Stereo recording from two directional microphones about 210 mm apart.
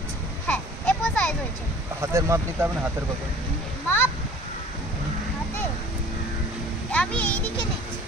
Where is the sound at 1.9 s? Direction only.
15° right (ahead or behind).